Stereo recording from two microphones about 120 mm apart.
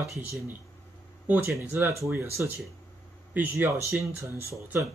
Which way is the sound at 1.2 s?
15° right (ahead or behind).